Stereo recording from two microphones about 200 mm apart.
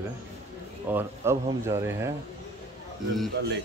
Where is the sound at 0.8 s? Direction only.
10° right (ahead or behind).